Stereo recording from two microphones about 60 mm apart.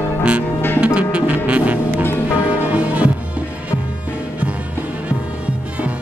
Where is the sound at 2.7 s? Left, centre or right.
Right.